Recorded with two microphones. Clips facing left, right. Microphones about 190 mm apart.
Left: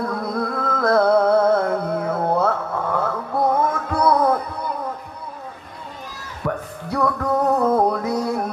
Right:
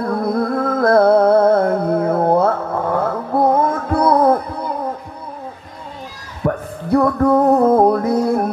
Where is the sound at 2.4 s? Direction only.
50° right (ahead or behind).